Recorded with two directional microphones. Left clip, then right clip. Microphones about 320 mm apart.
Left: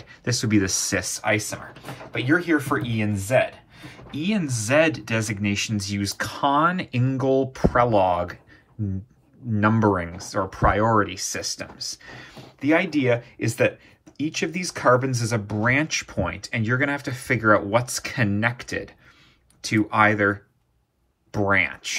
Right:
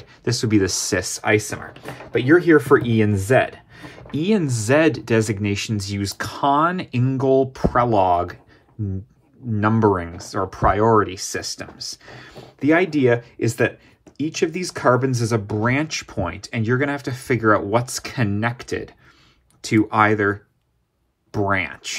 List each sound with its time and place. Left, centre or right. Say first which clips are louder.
0.0 s speech: right 3 dB; centre
9.5 s speech: right 2 dB; centre